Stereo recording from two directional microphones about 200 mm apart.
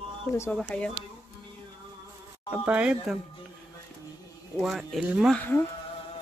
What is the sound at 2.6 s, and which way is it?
Speech, 5° right (ahead or behind).